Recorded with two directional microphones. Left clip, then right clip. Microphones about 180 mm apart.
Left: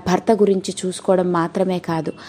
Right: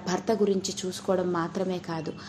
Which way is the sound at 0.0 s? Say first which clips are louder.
Left 10 dB; 45° left (ahead or behind).